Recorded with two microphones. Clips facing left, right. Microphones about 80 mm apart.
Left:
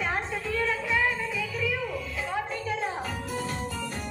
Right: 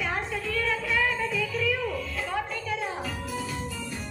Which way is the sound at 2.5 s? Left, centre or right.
Left.